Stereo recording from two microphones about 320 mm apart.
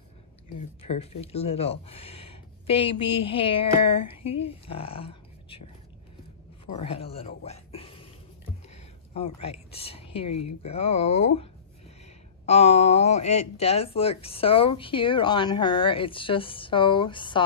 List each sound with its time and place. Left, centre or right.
1.2 s speech: centre
6.8 s speech: centre
8.6 s a sound: centre
10.6 s speech: centre
12.4 s speech: centre